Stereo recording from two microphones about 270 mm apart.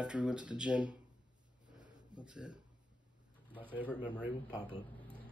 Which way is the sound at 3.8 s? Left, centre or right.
Centre.